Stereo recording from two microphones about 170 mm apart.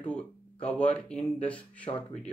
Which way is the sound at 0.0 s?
5° left (ahead or behind).